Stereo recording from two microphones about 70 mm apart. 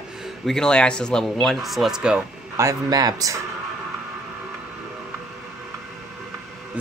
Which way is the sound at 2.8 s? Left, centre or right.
Right.